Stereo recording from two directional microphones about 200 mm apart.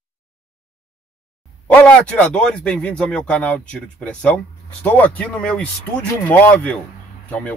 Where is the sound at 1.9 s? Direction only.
5° left (ahead or behind).